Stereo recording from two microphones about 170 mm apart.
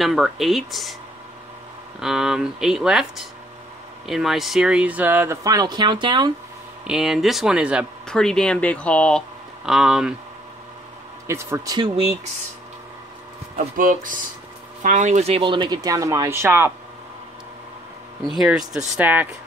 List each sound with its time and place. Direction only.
0.0 s speech: centre (ahead or behind)
2.0 s speech: 5° right (ahead or behind); by 6.3 s 25° right (ahead or behind)
6.9 s speech: centre (ahead or behind)
11.2 s speech: 15° right (ahead or behind)
13.6 s speech: 50° right (ahead or behind); by 16.7 s 15° right (ahead or behind)
18.2 s speech: centre (ahead or behind)